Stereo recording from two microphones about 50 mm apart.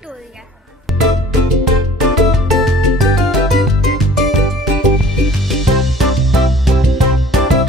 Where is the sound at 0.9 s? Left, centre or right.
Centre.